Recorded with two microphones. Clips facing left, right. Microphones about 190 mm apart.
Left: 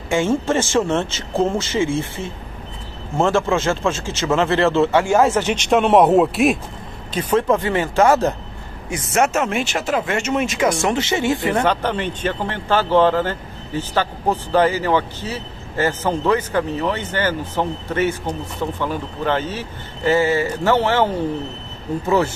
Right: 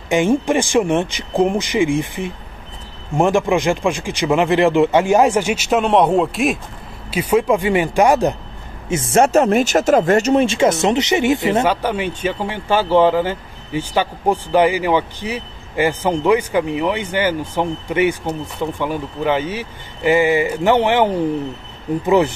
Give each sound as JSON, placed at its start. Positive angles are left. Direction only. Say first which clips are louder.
{"t": 0.1, "sound": "speech", "louder": "right 3 dB", "side_deg": -15}
{"t": 8.8, "sound": "speech", "louder": "right 4 dB", "side_deg": -25}
{"t": 11.6, "sound": "speech", "louder": "right 1 dB", "side_deg": -10}